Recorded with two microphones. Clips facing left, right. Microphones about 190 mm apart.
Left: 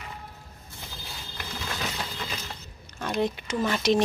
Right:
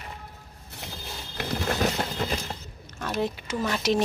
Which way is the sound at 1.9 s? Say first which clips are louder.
Right 7 dB; 45° right (ahead or behind).